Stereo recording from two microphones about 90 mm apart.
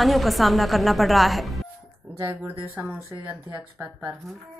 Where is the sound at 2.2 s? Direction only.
25° right (ahead or behind).